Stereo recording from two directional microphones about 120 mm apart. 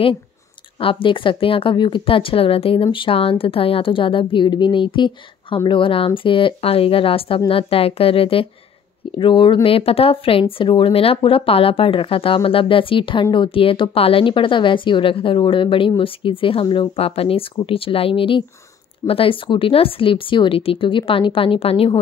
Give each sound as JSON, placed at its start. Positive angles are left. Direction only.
{"t": 0.7, "sound": "speech", "side_deg": 50}